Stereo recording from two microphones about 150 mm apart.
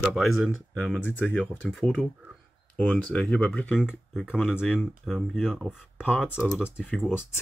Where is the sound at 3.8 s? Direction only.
5° right (ahead or behind).